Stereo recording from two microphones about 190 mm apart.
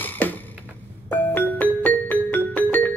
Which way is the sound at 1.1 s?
10° left (ahead or behind).